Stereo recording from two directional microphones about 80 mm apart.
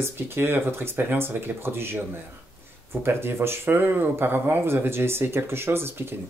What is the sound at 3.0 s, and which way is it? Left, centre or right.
Speech, right.